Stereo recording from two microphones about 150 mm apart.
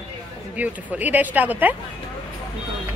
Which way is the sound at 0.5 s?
10° right (ahead or behind).